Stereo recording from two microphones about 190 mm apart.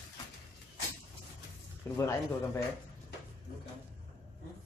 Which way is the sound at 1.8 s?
15° left (ahead or behind).